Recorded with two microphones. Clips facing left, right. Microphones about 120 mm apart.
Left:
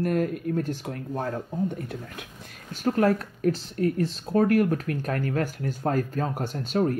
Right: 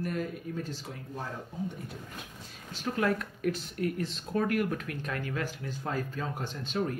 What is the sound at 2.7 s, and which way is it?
Speech, 45° left (ahead or behind).